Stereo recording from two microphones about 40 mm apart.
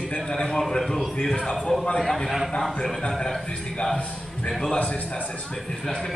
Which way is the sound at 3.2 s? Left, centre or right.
Centre.